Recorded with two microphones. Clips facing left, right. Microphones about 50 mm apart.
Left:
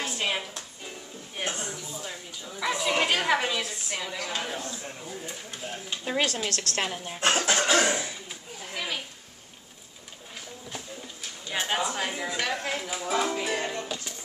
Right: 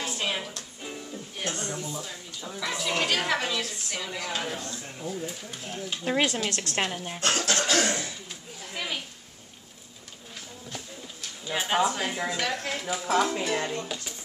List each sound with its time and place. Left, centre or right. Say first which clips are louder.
0.0 s music: left 1 dB; centre
1.4 s a sound: even; centre
4.3 s speech: right 2 dB; centre
4.6 s speech: left 1 dB; centre
5.0 s speech: right 4 dB; centre
6.0 s a woman's voice: right 2 dB; centre
6.8 s speech: right 2 dB; centre
7.2 s speech: left 3 dB; centre
8.7 s a sound: even; centre
11.4 s speech: right 3 dB; centre